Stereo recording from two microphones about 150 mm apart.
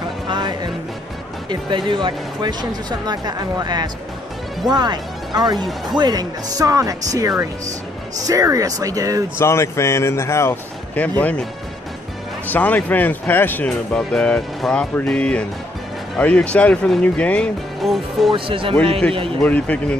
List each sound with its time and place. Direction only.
0.3 s music: 30° right (ahead or behind)
1.5 s speech: 30° right (ahead or behind)
9.4 s speech: 20° left (ahead or behind)
12.4 s speech: 10° left (ahead or behind)
18.3 s speech: 35° right (ahead or behind)
19.4 s speech: 10° left (ahead or behind)